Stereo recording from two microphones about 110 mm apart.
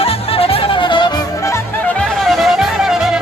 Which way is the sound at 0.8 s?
45° left (ahead or behind).